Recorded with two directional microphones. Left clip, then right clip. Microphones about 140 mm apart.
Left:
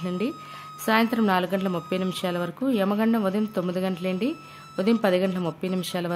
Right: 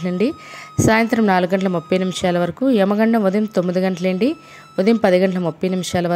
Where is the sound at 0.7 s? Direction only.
35° right (ahead or behind).